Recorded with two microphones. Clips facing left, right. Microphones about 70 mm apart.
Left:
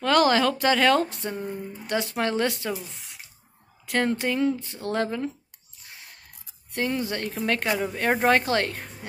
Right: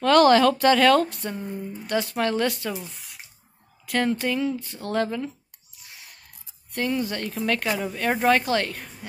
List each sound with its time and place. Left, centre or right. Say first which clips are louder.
0.0 s a woman's voice: right 4 dB; centre
3.8 s speech: right 1 dB; left
6.7 s speech: right 1 dB; left